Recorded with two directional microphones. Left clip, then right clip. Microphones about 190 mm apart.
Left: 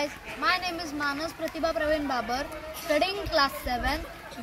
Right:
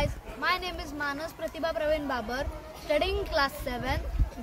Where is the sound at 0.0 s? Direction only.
35° right (ahead or behind).